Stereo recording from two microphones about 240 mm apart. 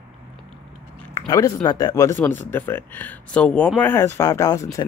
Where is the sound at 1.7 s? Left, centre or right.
Centre.